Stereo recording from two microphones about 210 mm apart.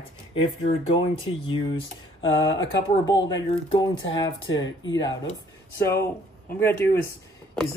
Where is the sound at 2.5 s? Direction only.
20° left (ahead or behind).